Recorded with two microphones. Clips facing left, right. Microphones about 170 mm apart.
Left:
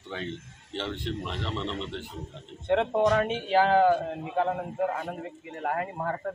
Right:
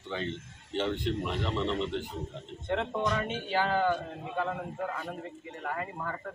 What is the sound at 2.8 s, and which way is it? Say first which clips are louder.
Speech: left 8 dB; 60° left (ahead or behind).